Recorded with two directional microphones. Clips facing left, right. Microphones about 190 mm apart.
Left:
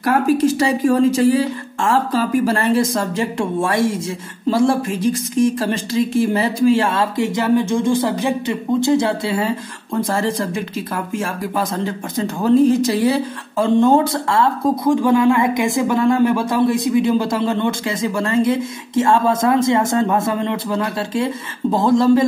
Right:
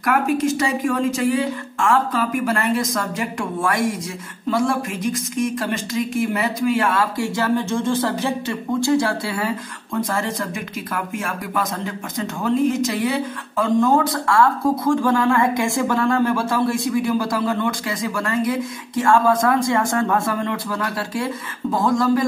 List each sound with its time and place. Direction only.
0.0 s speech: 30° left (ahead or behind)